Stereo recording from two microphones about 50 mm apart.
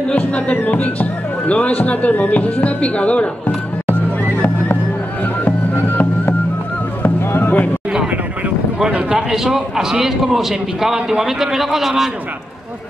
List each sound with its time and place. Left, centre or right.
0.2 s music: left
1.5 s speech: left
5.4 s music: left
7.0 s music: left
9.1 s a man's voice: centre